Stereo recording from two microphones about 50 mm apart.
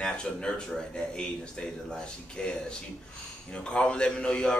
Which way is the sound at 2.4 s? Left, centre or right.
Centre.